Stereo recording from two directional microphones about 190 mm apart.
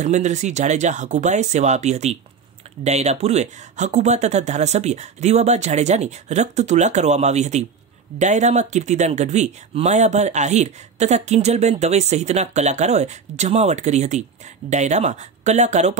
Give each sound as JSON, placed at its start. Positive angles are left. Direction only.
{"t": 0.0, "sound": "speech", "side_deg": -35}